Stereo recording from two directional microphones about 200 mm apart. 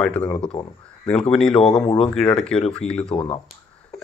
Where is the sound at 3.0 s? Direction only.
30° left (ahead or behind).